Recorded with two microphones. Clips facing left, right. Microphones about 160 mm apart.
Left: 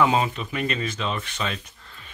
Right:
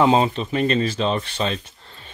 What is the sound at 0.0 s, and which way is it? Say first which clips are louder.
Speech: right 4 dB; 30° right (ahead or behind).